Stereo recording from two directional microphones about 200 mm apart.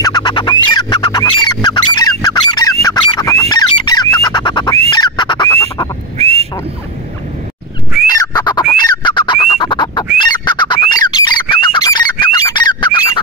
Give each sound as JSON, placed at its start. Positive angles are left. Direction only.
{"t": 0.0, "sound": "music", "side_deg": 20}
{"t": 1.4, "sound": "squawk", "side_deg": 20}
{"t": 4.8, "sound": "a sound", "side_deg": 20}
{"t": 6.1, "sound": "a sound", "side_deg": -30}
{"t": 8.1, "sound": "bird", "side_deg": 20}
{"t": 8.7, "sound": "fowl", "side_deg": 20}